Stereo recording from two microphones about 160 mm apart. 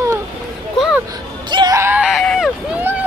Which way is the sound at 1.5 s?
25° right (ahead or behind).